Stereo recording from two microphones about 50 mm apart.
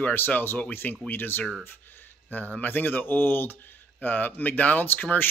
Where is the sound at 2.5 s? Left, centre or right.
Left.